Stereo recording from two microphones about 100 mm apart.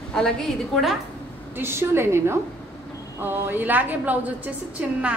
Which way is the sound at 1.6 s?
25° right (ahead or behind).